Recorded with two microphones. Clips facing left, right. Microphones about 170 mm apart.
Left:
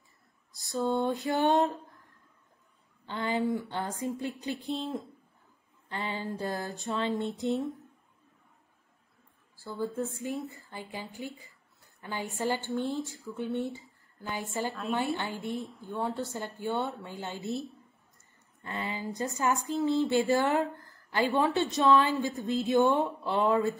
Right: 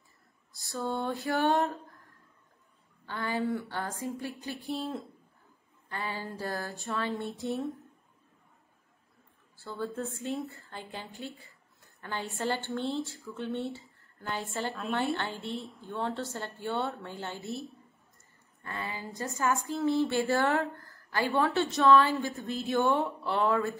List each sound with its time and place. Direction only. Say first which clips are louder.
0.5 s a woman's voice: left 4 dB; 20° left (ahead or behind)
3.1 s speech: left 2 dB; 20° left (ahead or behind)
9.6 s a woman's voice: left 2 dB; 10° left (ahead or behind)
14.7 s a woman's voice: left 1 dB; centre (ahead or behind)
15.8 s a woman's voice: right 1 dB; 15° left (ahead or behind)